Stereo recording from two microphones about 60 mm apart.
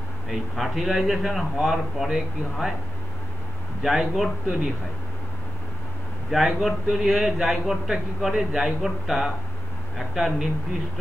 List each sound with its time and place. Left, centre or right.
0.3 s a man's voice: centre
3.8 s a man's voice: centre
6.3 s a man's voice: centre